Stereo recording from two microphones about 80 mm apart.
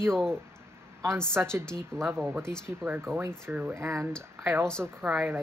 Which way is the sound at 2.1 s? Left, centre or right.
Right.